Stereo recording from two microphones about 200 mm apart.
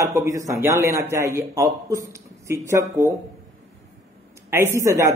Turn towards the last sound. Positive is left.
turn(degrees=-15)  # may be behind; listen again after turning